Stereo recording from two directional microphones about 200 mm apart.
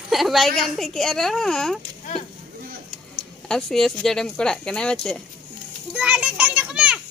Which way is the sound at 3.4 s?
Centre (ahead or behind).